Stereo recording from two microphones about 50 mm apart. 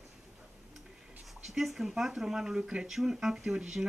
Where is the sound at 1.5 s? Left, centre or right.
Centre.